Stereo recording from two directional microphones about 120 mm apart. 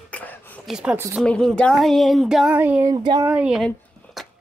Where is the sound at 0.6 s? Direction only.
5° right (ahead or behind).